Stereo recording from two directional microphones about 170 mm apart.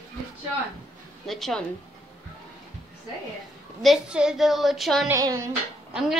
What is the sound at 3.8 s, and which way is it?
Child singing, 5° right (ahead or behind).